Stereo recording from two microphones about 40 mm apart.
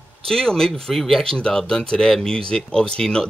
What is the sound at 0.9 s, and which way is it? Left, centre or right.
Speech, centre.